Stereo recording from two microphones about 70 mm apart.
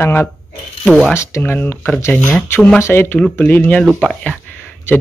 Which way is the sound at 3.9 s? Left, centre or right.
Centre.